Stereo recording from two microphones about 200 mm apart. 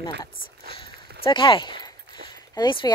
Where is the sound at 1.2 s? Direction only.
25° left (ahead or behind).